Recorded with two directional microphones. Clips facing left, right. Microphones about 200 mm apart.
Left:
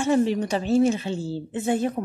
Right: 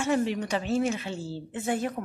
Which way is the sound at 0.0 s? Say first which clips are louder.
Left 5 dB; 35° left (ahead or behind).